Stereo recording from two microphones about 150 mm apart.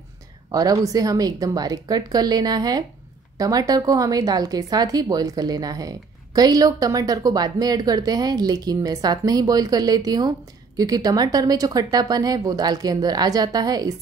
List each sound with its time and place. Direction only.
0.5 s speech: 25° right (ahead or behind)